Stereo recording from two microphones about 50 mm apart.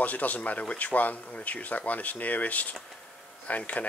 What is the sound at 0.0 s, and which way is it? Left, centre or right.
Speech, left.